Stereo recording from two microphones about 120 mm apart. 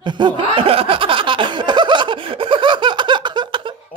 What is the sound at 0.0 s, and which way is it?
Snicker, 40° right (ahead or behind).